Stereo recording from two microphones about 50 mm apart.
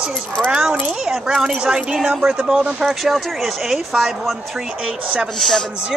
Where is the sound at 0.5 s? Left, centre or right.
Centre.